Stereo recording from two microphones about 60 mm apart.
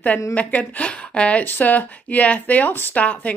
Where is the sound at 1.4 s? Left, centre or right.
Left.